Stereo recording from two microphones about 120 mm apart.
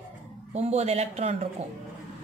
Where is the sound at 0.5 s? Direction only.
65° right (ahead or behind).